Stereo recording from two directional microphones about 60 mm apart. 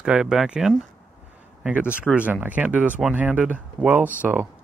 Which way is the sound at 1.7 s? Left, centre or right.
Right.